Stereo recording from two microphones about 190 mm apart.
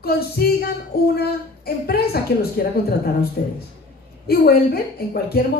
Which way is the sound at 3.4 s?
50° left (ahead or behind).